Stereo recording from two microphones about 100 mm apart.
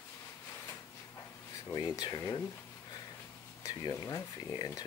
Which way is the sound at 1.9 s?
40° left (ahead or behind).